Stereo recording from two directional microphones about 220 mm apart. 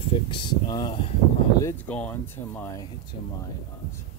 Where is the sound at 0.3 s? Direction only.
20° left (ahead or behind).